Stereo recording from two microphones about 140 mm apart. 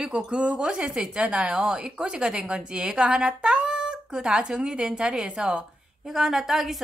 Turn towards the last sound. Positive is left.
turn(degrees=0)  # may be behind; listen again after turning